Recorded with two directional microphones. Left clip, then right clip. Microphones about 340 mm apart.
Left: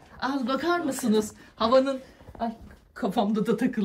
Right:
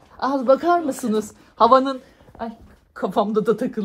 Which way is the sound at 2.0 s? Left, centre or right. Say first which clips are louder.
Right 1 dB; centre.